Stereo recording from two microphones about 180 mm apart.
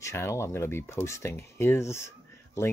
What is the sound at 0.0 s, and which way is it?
Speech, 15° left (ahead or behind).